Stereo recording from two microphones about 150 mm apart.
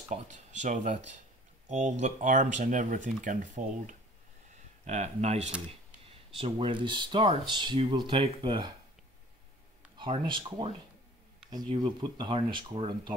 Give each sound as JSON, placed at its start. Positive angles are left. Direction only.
{"t": 0.1, "sound": "speech", "side_deg": -55}
{"t": 6.3, "sound": "speech", "side_deg": -35}
{"t": 9.9, "sound": "speech", "side_deg": -35}